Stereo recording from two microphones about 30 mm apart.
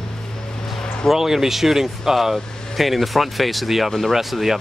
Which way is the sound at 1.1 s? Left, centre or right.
Centre.